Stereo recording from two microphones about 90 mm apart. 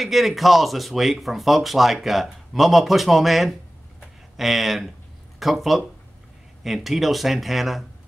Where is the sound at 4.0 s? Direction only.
Centre (ahead or behind).